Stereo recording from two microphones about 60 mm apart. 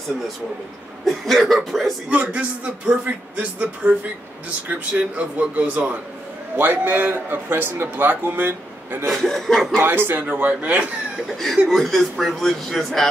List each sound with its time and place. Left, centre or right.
1.0 s speech: centre
2.0 s speech: right
6.5 s a man's voice: right
9.0 s speech: centre
9.8 s a man's voice: right
11.6 s speech: centre